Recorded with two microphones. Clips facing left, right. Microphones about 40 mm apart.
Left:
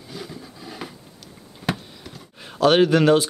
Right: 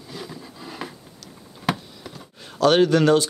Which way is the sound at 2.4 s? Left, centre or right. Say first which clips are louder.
Left 1 dB; centre.